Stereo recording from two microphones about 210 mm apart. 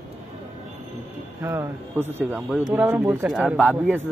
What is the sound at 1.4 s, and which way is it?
Speech, 15° right (ahead or behind).